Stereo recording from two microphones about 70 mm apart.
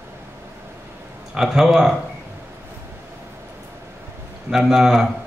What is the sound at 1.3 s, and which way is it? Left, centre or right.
Speech, centre.